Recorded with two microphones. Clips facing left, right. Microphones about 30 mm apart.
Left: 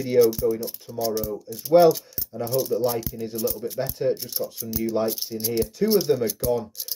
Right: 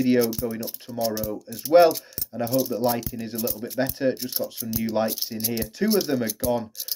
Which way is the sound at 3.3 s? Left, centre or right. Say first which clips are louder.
Left 3 dB; centre.